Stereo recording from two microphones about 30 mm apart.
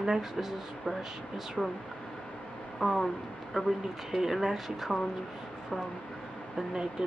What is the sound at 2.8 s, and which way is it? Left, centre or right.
Speech, centre.